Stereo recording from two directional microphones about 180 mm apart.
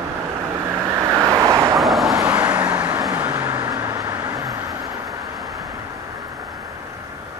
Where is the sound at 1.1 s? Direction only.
20° right (ahead or behind).